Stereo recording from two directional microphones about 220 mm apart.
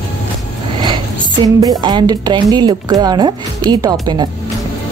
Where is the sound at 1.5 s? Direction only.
20° right (ahead or behind).